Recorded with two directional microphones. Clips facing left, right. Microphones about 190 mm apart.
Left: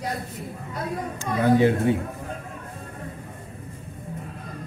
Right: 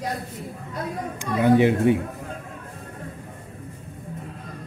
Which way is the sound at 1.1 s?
20° right (ahead or behind).